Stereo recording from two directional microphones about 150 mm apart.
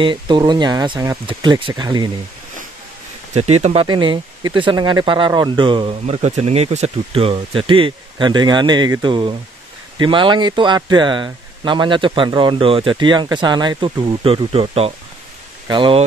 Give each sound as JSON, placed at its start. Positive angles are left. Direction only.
{"t": 0.0, "sound": "speech", "side_deg": -30}
{"t": 3.3, "sound": "speech", "side_deg": -45}
{"t": 3.8, "sound": "speech", "side_deg": -30}
{"t": 6.0, "sound": "speech", "side_deg": -45}